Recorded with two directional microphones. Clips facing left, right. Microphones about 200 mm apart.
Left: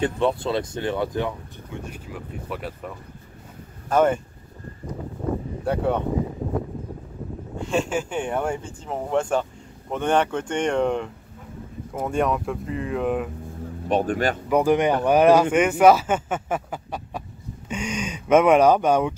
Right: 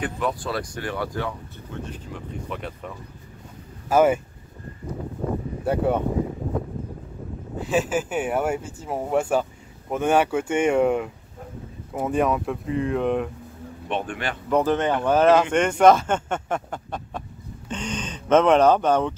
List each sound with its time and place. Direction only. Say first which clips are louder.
0.0 s speech: left 5 dB; 25° left (ahead or behind)
1.8 s speech: right 1 dB; 10° left (ahead or behind)
3.9 s speech: right 1 dB; 5° right (ahead or behind)
5.7 s speech: right 1 dB; 5° right (ahead or behind)
7.5 s speech: right 1 dB; 5° right (ahead or behind)
13.8 s speech: left 6 dB; 40° left (ahead or behind)
14.5 s speech: left 1 dB; 10° left (ahead or behind)